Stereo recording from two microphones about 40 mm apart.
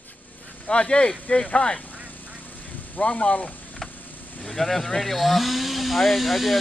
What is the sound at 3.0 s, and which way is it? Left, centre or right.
Speech, left.